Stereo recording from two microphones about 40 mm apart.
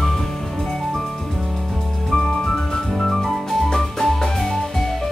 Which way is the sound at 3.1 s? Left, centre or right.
Centre.